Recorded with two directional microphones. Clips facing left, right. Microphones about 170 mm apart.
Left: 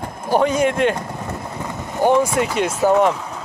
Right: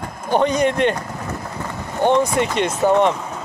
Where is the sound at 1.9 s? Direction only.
5° left (ahead or behind).